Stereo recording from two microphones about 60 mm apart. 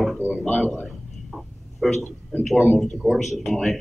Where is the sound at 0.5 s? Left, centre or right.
Left.